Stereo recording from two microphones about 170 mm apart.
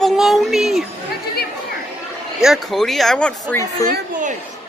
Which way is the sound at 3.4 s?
20° left (ahead or behind).